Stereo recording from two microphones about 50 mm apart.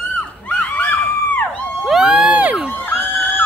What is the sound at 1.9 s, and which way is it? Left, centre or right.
Crowd, centre.